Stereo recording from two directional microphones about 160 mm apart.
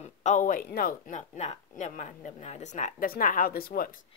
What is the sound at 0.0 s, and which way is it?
A woman's voice, 50° left (ahead or behind).